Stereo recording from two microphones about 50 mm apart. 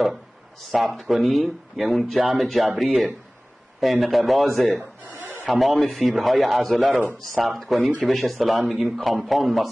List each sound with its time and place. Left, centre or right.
0.7 s a man's voice: centre
5.0 s chuckle: right
5.5 s a man's voice: centre
6.9 s a man's voice: right
7.2 s a man's voice: centre